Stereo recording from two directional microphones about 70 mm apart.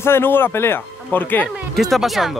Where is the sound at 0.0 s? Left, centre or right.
Left.